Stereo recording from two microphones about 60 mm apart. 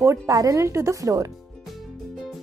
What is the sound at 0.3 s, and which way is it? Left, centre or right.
Speech, right.